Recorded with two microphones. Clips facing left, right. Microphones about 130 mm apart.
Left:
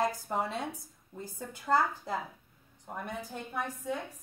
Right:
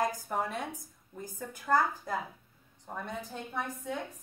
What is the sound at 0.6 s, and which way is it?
Speech, 15° right (ahead or behind).